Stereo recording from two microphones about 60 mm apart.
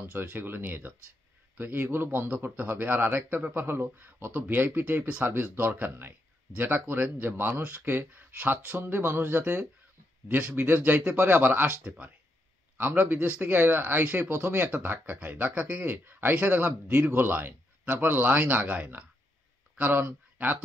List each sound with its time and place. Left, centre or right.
0.1 s speech: right
12.7 s speech: right